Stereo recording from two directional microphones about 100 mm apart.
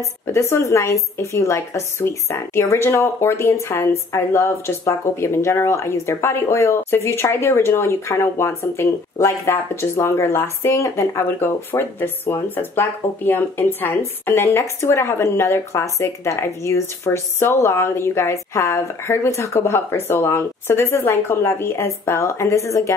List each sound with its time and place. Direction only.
0.3 s speech: 25° left (ahead or behind)